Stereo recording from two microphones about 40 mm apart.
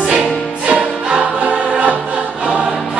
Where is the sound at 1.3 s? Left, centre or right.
Right.